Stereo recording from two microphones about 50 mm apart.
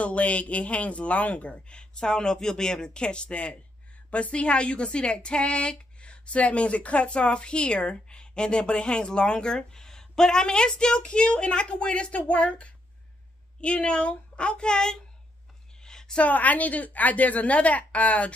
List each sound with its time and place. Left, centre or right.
0.0 s a woman's voice: left
15.8 s a sound: centre
16.2 s a woman's voice: left